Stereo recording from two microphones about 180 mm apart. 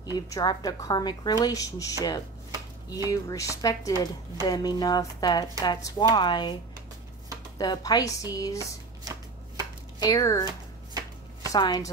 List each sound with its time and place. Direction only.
0.0 s a woman's voice: 20° left (ahead or behind)
7.5 s a woman's voice: 20° left (ahead or behind)
9.9 s a woman's voice: 20° left (ahead or behind)